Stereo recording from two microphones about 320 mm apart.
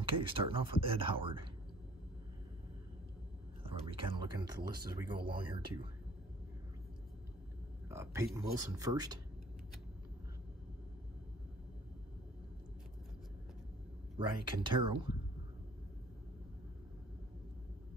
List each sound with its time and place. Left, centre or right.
0.0 s speech: centre
3.6 s speech: centre
7.9 s speech: centre
14.1 s speech: centre